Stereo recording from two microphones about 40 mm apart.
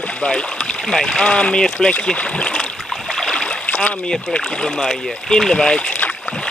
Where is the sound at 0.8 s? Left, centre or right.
Centre.